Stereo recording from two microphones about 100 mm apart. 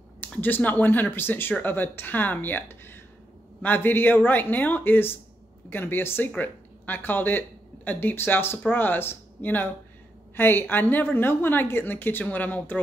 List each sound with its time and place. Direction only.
0.2 s a woman's voice: 20° left (ahead or behind)